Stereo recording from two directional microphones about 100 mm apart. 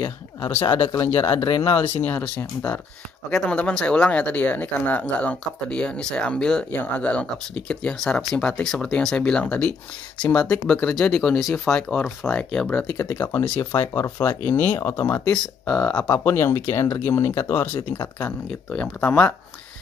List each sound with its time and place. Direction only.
0.9 s speech: 20° left (ahead or behind)
12.9 s speech: 35° left (ahead or behind)
13.2 s speech: 20° left (ahead or behind)
15.3 s speech: 10° left (ahead or behind)
16.1 s speech: 25° left (ahead or behind)